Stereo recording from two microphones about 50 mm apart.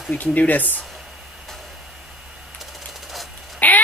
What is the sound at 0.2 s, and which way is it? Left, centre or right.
Speech, left.